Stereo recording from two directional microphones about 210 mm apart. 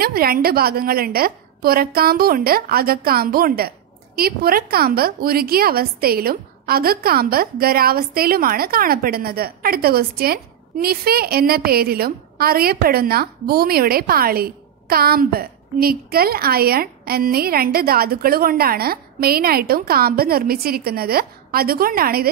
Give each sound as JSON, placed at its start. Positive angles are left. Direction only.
{"t": 0.0, "sound": "a woman's voice", "side_deg": -45}